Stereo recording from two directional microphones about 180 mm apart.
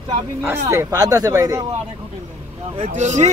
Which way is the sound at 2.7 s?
40° right (ahead or behind).